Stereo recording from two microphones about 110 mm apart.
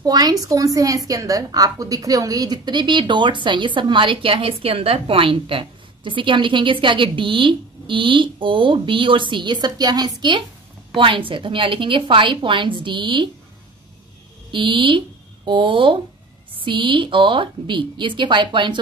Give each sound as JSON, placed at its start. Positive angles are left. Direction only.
{"t": 0.0, "sound": "a woman's voice", "side_deg": -35}
{"t": 11.0, "sound": "a woman's voice", "side_deg": -50}
{"t": 14.5, "sound": "a woman's voice", "side_deg": -50}